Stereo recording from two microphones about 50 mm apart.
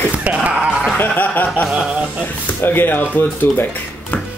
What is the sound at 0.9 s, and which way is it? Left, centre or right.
Speech, left.